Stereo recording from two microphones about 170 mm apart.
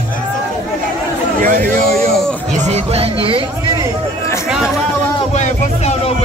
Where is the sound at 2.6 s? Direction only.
40° right (ahead or behind).